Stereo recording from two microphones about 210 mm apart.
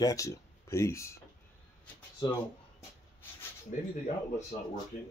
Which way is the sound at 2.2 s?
20° left (ahead or behind).